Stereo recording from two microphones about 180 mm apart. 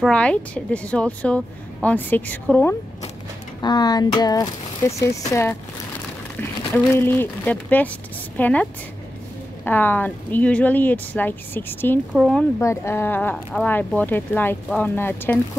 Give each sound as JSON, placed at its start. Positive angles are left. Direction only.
{"t": 0.0, "sound": "speech", "side_deg": 5}
{"t": 3.6, "sound": "speech", "side_deg": 25}
{"t": 6.7, "sound": "speech", "side_deg": 10}
{"t": 9.7, "sound": "speech", "side_deg": 10}
{"t": 12.1, "sound": "speech", "side_deg": 0}
{"t": 12.5, "sound": "speech", "side_deg": 15}